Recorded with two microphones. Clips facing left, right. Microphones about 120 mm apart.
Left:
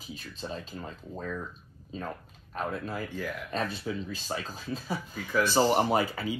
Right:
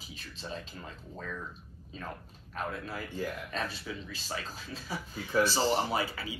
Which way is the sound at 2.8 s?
45° left (ahead or behind).